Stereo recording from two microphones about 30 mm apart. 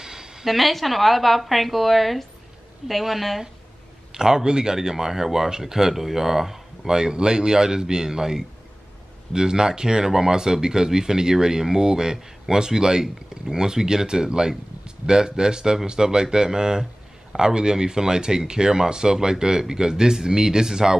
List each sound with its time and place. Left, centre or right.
0.0 s a sound: right
0.5 s a woman's voice: centre
4.1 s speech: right
4.7 s speech: centre
6.9 s speech: right